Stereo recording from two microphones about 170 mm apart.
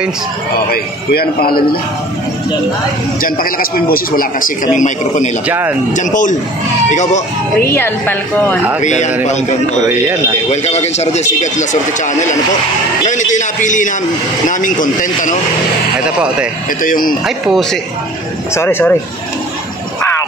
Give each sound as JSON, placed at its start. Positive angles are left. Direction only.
{"t": 0.7, "sound": "a man's voice", "side_deg": 65}
{"t": 3.2, "sound": "a man's voice", "side_deg": 55}
{"t": 5.5, "sound": "speech", "side_deg": -10}
{"t": 5.9, "sound": "a man's voice", "side_deg": 50}
{"t": 7.6, "sound": "a woman's voice", "side_deg": 15}
{"t": 8.8, "sound": "a man's voice", "side_deg": 45}
{"t": 16.8, "sound": "a man's voice", "side_deg": 55}
{"t": 18.5, "sound": "a woman's voice", "side_deg": 15}